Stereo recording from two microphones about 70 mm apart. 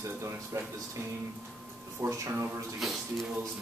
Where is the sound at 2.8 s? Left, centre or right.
Centre.